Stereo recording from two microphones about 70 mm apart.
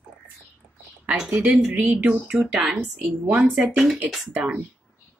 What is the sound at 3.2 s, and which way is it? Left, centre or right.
Speech, right.